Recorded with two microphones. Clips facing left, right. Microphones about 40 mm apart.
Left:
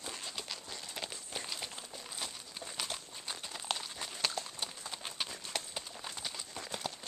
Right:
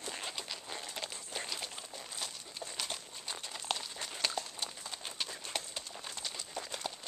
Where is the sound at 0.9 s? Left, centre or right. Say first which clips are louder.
Left 3 dB; centre.